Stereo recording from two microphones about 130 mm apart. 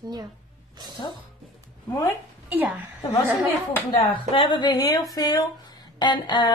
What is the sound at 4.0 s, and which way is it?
Speech, 40° left (ahead or behind).